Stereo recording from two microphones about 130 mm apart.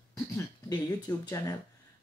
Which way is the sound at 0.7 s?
25° left (ahead or behind).